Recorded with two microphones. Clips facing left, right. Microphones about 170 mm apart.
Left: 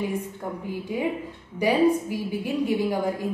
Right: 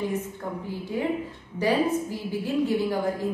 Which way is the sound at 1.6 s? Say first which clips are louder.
Left 3 dB; 15° left (ahead or behind).